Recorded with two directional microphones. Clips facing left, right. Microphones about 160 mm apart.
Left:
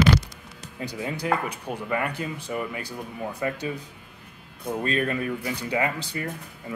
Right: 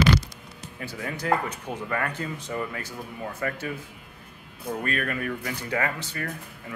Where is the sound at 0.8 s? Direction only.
20° left (ahead or behind).